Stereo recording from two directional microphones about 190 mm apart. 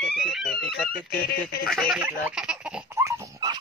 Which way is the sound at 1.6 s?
Centre (ahead or behind).